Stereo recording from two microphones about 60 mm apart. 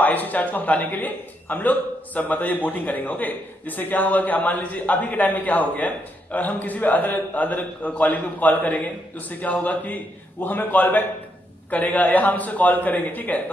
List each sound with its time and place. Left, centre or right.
0.0 s a man's voice: left